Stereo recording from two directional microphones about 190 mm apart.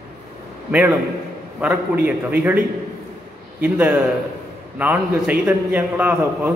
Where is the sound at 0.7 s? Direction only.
5° right (ahead or behind).